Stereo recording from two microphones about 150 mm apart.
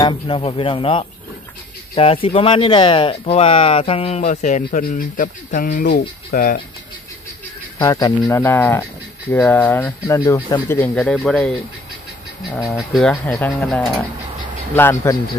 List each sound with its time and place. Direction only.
0.0 s speech: 35° left (ahead or behind)
2.2 s speech: 35° left (ahead or behind); by 6.6 s 65° left (ahead or behind)
7.8 s speech: 25° left (ahead or behind); by 11.5 s 5° left (ahead or behind)
12.6 s speech: centre (ahead or behind)
13.2 s speech: 10° left (ahead or behind)